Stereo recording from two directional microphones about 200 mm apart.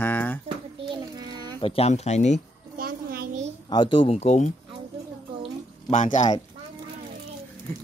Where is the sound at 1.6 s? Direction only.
30° left (ahead or behind).